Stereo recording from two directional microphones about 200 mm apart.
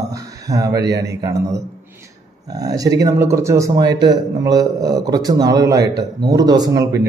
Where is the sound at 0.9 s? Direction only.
15° right (ahead or behind).